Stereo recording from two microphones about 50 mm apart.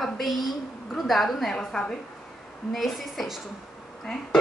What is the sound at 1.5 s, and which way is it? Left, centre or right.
Dishes, centre.